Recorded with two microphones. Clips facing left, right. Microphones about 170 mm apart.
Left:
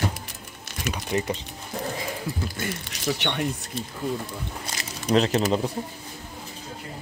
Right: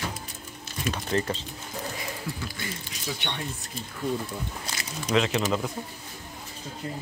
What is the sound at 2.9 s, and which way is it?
Speech, 80° left.